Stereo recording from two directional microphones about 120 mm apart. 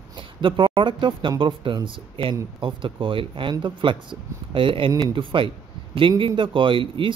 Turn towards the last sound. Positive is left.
turn(degrees=-45)  # may be behind; listen again after turning